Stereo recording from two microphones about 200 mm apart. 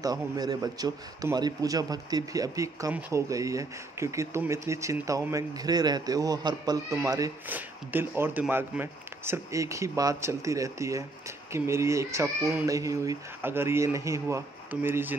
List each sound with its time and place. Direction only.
0.0 s a man's voice: 20° right (ahead or behind)